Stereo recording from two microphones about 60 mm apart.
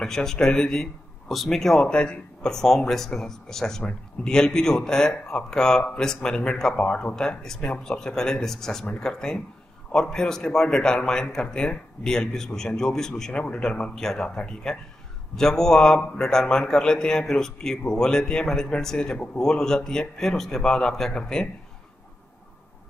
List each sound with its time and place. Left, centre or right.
0.0 s a man's voice: centre